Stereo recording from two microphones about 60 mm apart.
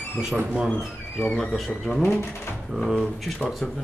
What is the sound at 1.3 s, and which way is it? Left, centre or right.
Speech, centre.